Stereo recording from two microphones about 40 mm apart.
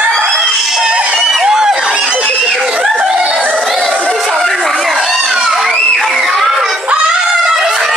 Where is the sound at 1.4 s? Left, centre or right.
Centre.